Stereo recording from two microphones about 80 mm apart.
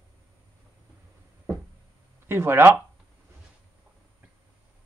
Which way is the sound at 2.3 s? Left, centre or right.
Right.